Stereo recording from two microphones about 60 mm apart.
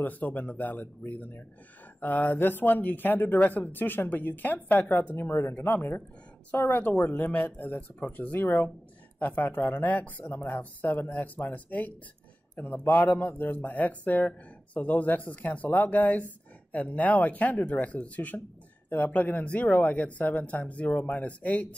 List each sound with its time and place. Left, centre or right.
0.0 s speech: left
5.1 s speech: left
10.2 s speech: left
10.5 s speech: left